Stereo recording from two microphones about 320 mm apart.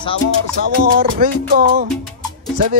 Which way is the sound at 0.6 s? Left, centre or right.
Right.